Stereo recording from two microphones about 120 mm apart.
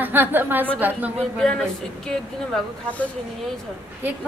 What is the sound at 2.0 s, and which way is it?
Speech, 10° left (ahead or behind).